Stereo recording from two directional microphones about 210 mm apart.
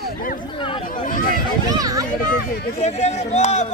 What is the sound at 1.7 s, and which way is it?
Speech, 15° right (ahead or behind).